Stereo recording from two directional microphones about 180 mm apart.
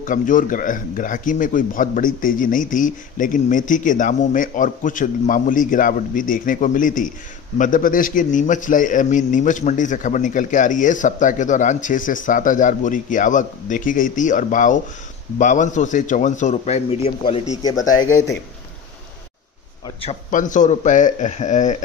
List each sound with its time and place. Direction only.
0.0 s a man's voice: 50° left (ahead or behind)
17.6 s speech: 20° left (ahead or behind)
20.2 s a man's voice: 45° left (ahead or behind)